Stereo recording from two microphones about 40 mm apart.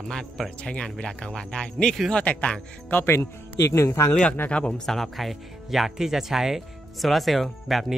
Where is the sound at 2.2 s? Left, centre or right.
Left.